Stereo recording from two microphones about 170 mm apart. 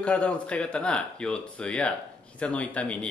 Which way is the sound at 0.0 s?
5° left (ahead or behind).